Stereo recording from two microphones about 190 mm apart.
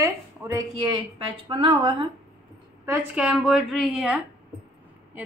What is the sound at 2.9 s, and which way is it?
A woman's voice, 10° right (ahead or behind).